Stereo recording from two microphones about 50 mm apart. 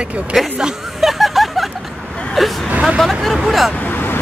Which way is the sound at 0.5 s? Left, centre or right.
Centre.